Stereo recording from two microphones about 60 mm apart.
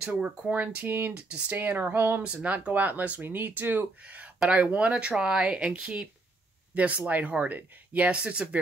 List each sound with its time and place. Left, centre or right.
0.0 s speech: centre
0.5 s speech: right
1.8 s speech: right
2.2 s speech: right
4.0 s speech: right